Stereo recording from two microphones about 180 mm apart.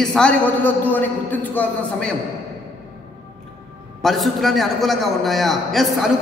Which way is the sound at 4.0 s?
Centre (ahead or behind).